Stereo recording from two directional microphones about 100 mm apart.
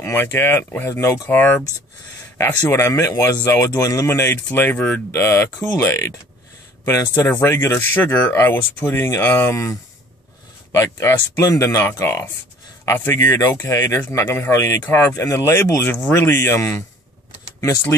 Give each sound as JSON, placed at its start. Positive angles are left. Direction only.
{"t": 0.0, "sound": "speech", "side_deg": 25}
{"t": 1.3, "sound": "speech", "side_deg": 20}
{"t": 5.1, "sound": "speech", "side_deg": 25}
{"t": 10.8, "sound": "speech", "side_deg": 30}
{"t": 11.8, "sound": "speech", "side_deg": 25}